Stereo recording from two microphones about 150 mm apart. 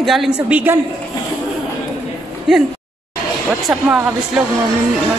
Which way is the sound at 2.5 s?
5° right (ahead or behind).